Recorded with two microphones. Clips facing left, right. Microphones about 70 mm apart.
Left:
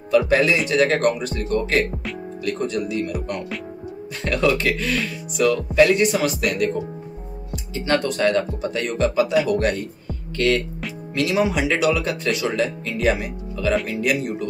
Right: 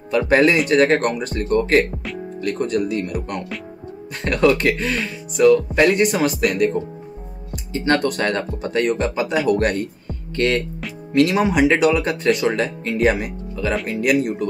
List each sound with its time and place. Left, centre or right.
0.1 s speech: right
4.7 s speech: right
7.5 s speech: right
9.5 s speech: right